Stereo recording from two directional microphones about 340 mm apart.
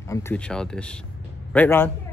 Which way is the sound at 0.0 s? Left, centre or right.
Centre.